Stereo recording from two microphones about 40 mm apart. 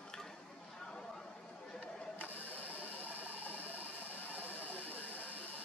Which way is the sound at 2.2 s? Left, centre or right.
Left.